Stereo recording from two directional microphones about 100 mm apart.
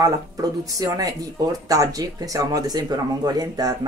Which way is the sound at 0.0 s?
35° right (ahead or behind).